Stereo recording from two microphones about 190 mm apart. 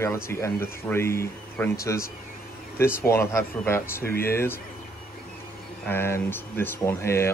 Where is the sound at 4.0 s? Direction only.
55° left (ahead or behind).